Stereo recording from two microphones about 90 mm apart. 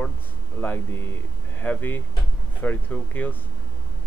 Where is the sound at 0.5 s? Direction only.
25° left (ahead or behind).